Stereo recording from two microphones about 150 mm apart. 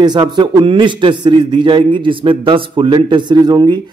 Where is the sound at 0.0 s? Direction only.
30° right (ahead or behind).